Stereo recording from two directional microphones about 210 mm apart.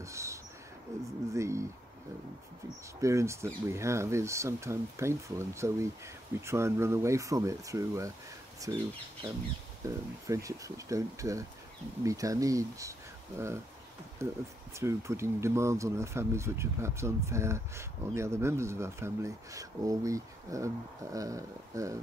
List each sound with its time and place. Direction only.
0.0 s a sound: 15° right (ahead or behind)
0.9 s speech: 15° right (ahead or behind)
3.0 s speech: 15° right (ahead or behind)
9.8 s speech: 15° right (ahead or behind)
14.2 s speech: 15° right (ahead or behind)